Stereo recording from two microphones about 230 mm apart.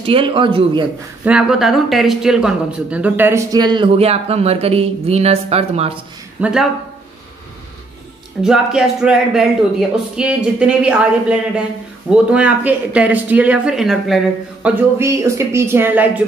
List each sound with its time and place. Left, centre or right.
0.0 s speech: right
1.2 s speech: centre; by 5.9 s right
6.4 s speech: centre
8.4 s speech: centre